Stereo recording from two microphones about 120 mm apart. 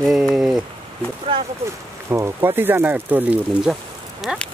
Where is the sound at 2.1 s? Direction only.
20° right (ahead or behind).